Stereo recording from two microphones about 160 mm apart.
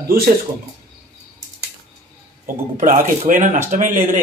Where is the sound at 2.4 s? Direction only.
60° right (ahead or behind).